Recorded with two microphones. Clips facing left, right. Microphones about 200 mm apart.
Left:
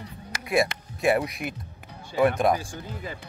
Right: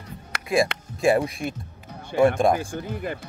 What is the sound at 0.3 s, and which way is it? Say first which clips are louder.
Music: right 3 dB; 65° right (ahead or behind).